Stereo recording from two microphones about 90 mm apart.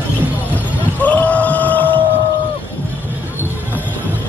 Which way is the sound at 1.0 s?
15° left (ahead or behind).